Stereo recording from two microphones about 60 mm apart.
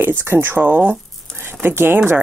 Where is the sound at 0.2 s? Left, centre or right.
Right.